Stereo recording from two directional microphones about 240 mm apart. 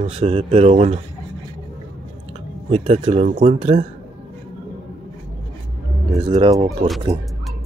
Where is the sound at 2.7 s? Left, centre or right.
Right.